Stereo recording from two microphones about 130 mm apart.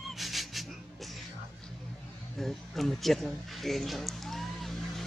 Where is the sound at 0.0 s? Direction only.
Centre (ahead or behind).